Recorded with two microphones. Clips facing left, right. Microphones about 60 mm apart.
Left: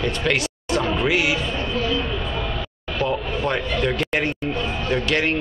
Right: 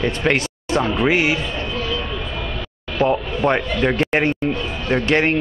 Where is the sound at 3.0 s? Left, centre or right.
Right.